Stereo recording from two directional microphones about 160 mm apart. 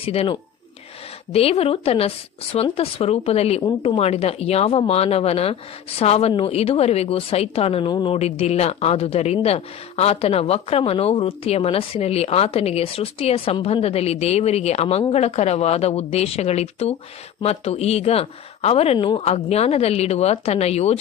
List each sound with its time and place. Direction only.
0.0 s speech: 35° left (ahead or behind)